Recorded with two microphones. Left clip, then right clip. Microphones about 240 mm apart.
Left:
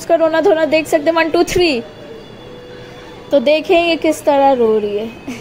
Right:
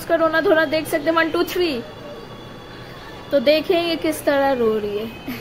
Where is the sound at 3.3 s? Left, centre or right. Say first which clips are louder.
Left 5 dB; centre.